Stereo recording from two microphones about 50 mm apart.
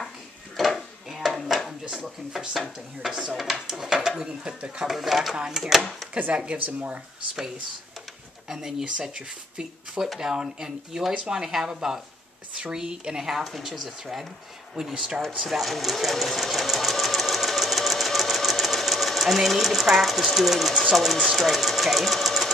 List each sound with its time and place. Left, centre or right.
0.6 s a sound: centre
2.5 s speech: centre
3.1 s speech: centre
3.3 s speech: centre
4.8 s speech: centre
6.3 s speech: right
6.6 s speech: right
8.5 s speech: centre
13.4 s speech: centre
15.4 s sewing machine: centre
20.9 s speech: centre